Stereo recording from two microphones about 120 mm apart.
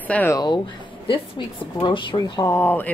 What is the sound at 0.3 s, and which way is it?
Speech, 35° left (ahead or behind).